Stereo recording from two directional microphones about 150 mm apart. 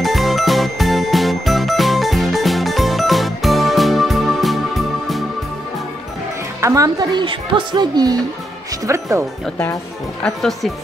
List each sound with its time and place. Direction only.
0.0 s jingle: centre (ahead or behind)
6.6 s speech: 20° right (ahead or behind)
10.2 s speech: centre (ahead or behind)